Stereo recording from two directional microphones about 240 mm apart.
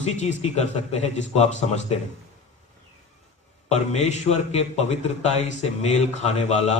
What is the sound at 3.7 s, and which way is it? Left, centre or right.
A man's voice, left.